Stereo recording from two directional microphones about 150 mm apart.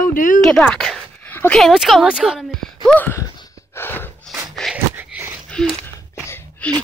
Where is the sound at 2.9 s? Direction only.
15° left (ahead or behind).